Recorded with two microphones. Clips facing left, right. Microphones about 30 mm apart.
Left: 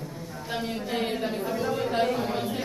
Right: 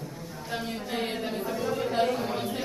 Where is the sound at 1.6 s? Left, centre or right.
Centre.